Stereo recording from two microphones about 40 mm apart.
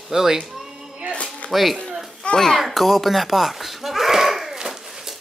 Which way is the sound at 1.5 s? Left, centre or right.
Centre.